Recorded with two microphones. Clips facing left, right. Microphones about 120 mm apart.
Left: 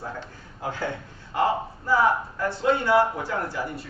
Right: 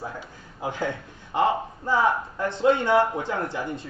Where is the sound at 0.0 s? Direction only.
15° right (ahead or behind).